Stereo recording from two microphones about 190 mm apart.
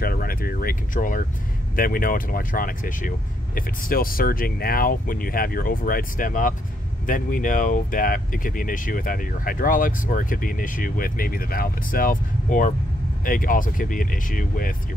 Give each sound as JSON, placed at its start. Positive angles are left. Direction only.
{"t": 0.0, "sound": "speech", "side_deg": 50}